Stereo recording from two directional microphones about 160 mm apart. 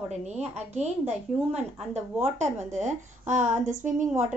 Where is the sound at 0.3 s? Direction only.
45° right (ahead or behind).